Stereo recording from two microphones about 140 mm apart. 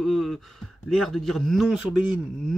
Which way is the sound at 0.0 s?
Centre (ahead or behind).